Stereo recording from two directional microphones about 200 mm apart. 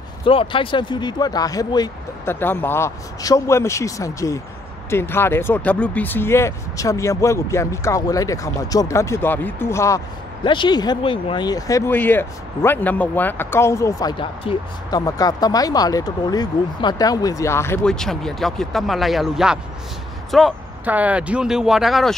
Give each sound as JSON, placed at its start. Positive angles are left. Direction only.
{"t": 0.2, "sound": "speech", "side_deg": 25}